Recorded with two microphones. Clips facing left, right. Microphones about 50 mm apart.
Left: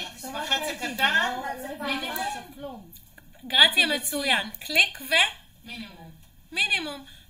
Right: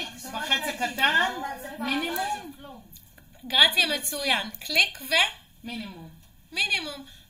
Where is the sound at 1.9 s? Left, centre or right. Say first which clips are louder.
Right 3 dB; centre.